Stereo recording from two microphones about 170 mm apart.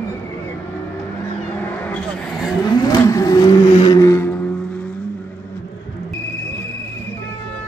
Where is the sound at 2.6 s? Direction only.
25° left (ahead or behind).